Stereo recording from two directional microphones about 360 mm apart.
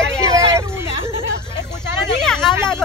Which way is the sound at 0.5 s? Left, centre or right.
Centre.